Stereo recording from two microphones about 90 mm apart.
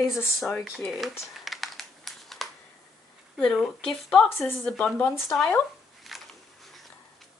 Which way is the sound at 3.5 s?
5° left (ahead or behind).